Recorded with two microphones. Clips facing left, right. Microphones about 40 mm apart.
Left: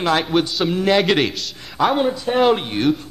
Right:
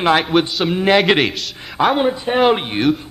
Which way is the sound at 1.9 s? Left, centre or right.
Right.